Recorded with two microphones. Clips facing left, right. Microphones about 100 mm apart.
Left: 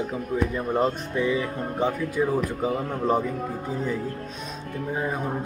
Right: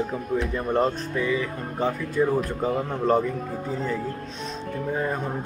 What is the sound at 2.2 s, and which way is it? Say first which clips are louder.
Speech: right 2 dB; 5° left (ahead or behind).